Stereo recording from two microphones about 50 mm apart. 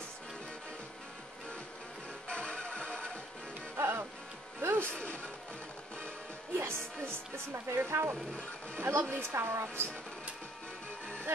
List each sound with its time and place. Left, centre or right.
2.2 s music: left
3.7 s music: right
5.0 s music: left
6.5 s music: right
8.7 s a woman's voice: right